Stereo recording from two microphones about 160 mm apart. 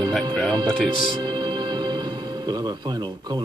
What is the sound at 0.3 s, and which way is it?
Speech, 5° left (ahead or behind).